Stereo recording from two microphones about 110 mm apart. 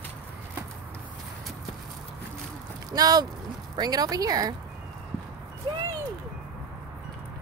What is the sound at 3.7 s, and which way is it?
Speech, 35° right (ahead or behind).